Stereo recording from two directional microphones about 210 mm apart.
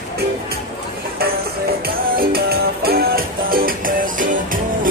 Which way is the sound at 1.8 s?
45° right (ahead or behind).